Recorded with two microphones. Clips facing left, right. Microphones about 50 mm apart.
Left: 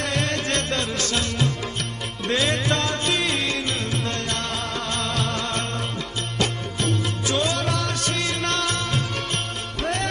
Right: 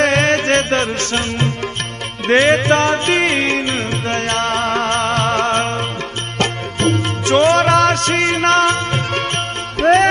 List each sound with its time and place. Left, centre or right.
0.0 s music: right
9.8 s music: right